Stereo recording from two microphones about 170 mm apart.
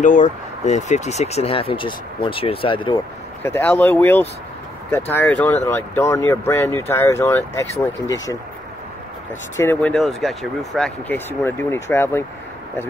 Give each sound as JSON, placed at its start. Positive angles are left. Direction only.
{"t": 0.0, "sound": "speech", "side_deg": 45}
{"t": 3.4, "sound": "speech", "side_deg": 15}
{"t": 9.6, "sound": "speech", "side_deg": 10}